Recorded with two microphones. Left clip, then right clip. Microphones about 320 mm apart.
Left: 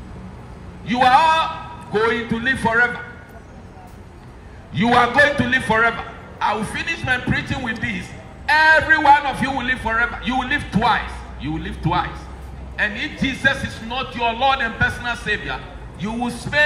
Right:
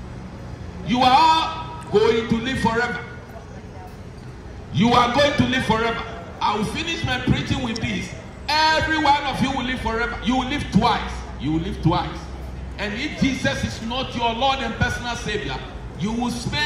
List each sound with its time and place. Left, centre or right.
0.8 s a man's voice: left
4.7 s a man's voice: left